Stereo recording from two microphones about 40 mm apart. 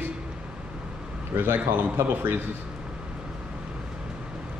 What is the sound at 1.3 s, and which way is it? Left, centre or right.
A man's voice, right.